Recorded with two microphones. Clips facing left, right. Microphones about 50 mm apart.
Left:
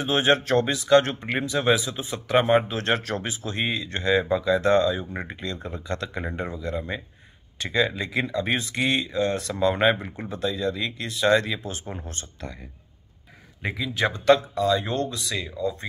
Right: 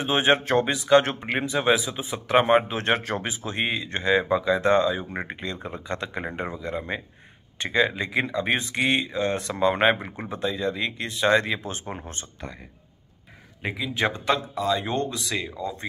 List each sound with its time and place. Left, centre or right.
0.0 s speech: right
13.6 s speech: centre
13.9 s speech: right
14.2 s speech: centre